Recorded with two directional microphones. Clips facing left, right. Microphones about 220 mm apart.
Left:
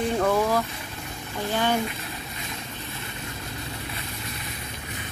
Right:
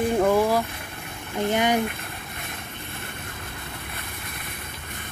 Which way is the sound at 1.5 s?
20° right (ahead or behind).